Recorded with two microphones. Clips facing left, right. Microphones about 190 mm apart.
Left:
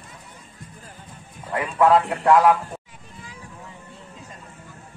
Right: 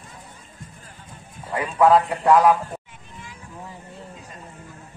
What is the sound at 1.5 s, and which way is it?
A man's voice, centre (ahead or behind).